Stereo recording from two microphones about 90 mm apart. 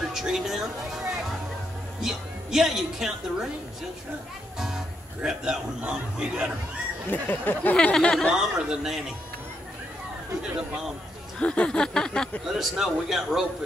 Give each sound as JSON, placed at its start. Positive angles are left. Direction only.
{"t": 0.0, "sound": "a woman's voice", "side_deg": -5}
{"t": 4.6, "sound": "speech", "side_deg": -5}
{"t": 7.1, "sound": "speech", "side_deg": 20}
{"t": 7.7, "sound": "a sound", "side_deg": 10}
{"t": 8.4, "sound": "speech", "side_deg": -5}
{"t": 11.3, "sound": "a sound", "side_deg": 10}
{"t": 12.4, "sound": "speech", "side_deg": -5}